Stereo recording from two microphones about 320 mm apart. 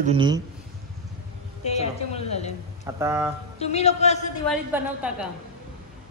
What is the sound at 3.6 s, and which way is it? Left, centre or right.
Speech, centre.